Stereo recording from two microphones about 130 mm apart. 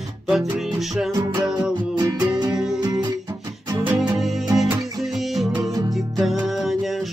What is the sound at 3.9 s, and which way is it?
Music, 5° right (ahead or behind).